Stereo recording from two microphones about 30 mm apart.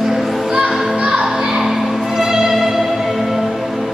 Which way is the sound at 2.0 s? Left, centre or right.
Centre.